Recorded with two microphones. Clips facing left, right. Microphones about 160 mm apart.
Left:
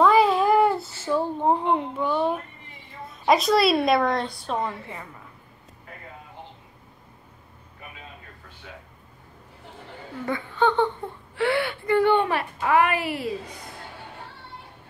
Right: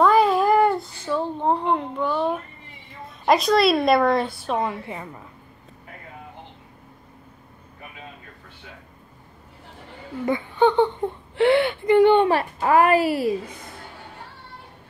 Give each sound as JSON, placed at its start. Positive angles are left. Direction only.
{"t": 0.0, "sound": "a sound", "side_deg": 0}
{"t": 3.3, "sound": "a woman's voice", "side_deg": 0}
{"t": 10.2, "sound": "speech", "side_deg": -20}
{"t": 11.3, "sound": "whimper", "side_deg": -25}
{"t": 12.3, "sound": "a child's voice", "side_deg": -35}